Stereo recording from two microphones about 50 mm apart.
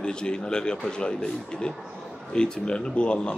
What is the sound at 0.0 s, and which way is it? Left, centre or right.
Speech, centre.